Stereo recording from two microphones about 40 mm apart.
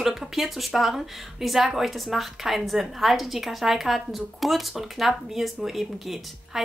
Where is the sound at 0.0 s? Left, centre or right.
Centre.